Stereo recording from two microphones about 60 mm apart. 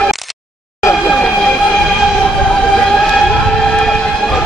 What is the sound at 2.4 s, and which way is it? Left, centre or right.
Siren, centre.